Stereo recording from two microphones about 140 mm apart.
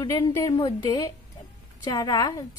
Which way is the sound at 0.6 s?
30° left (ahead or behind).